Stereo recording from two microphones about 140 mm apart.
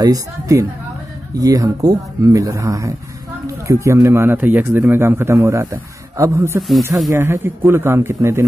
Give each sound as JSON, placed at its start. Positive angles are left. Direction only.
{"t": 0.0, "sound": "a man's voice", "side_deg": -25}